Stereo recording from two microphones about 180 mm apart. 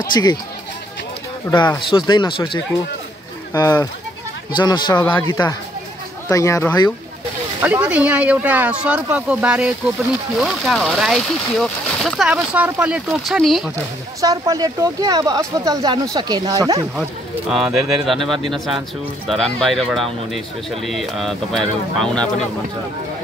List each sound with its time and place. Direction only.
0.1 s a man's voice: 25° left (ahead or behind)
1.5 s a man's voice: 25° left (ahead or behind)
7.6 s speech: 10° right (ahead or behind)
14.2 s speech: 20° right (ahead or behind)
17.5 s speech: centre (ahead or behind)